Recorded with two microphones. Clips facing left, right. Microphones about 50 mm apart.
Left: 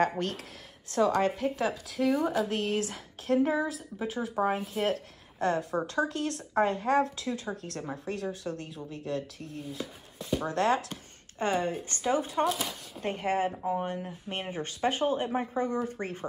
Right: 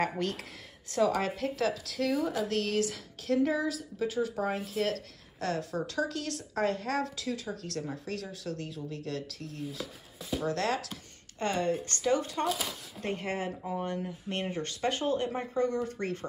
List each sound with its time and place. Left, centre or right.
0.0 s a woman's voice: centre
1.6 s speech: centre
2.8 s speech: left
12.4 s a woman's voice: centre
13.0 s speech: left